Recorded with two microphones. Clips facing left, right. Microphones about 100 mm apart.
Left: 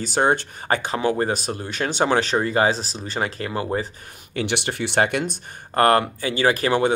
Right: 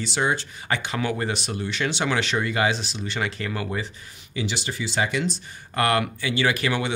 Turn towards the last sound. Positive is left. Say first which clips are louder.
# left 5 dB
turn(degrees=40)  # may be behind; listen again after turning